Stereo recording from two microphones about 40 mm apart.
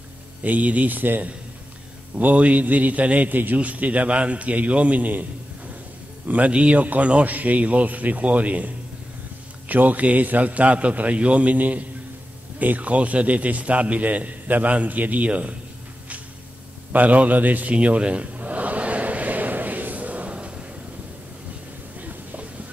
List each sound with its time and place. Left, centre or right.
0.4 s speech: right
2.1 s a man's voice: right
6.2 s a man's voice: right
16.9 s speech: right
17.7 s a sound: right
21.9 s a sound: right